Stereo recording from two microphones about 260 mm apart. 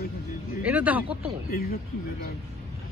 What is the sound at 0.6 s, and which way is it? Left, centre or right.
Speech, centre.